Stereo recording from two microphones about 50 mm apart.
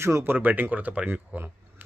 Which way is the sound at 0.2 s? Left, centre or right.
Right.